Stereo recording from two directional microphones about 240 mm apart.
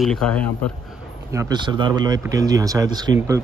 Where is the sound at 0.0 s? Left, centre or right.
Centre.